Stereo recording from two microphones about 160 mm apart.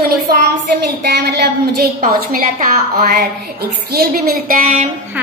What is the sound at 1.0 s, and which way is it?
Speech, 85° right.